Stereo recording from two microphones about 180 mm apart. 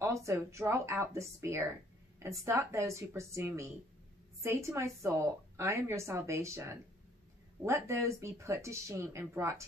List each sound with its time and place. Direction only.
0.0 s a woman's voice: 15° right (ahead or behind)